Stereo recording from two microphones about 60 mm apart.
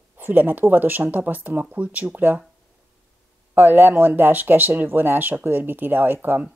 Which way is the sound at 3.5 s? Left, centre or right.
Right.